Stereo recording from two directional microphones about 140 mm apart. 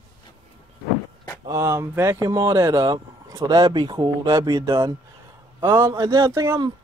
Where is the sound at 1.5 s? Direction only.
20° right (ahead or behind).